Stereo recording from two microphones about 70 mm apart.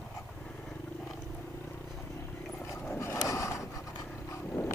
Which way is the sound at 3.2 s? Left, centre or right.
Left.